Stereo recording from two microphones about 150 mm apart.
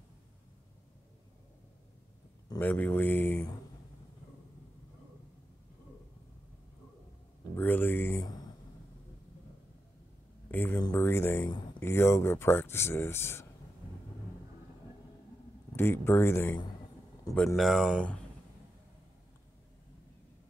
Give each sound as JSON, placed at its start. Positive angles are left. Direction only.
{"t": 2.6, "sound": "speech", "side_deg": 10}
{"t": 7.5, "sound": "speech", "side_deg": 15}
{"t": 10.5, "sound": "speech", "side_deg": 10}
{"t": 15.7, "sound": "speech", "side_deg": 15}
{"t": 17.6, "sound": "speech", "side_deg": 0}